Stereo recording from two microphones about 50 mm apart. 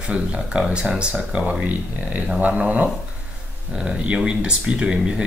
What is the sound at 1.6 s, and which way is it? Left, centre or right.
Speech, right.